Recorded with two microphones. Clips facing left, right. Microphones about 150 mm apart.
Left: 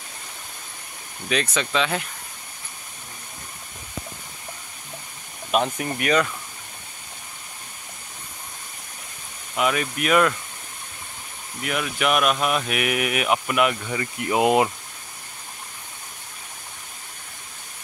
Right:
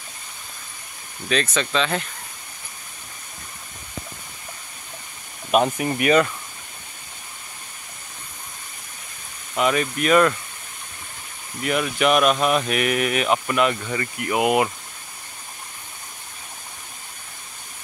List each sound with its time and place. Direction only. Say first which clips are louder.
1.3 s speech: right 1 dB; 10° left (ahead or behind)
5.5 s speech: right 4 dB; 10° right (ahead or behind)
9.6 s speech: right 2 dB; 5° left (ahead or behind)
11.6 s speech: right 4 dB; centre (ahead or behind)
14.1 s speech: left 1 dB; 25° left (ahead or behind)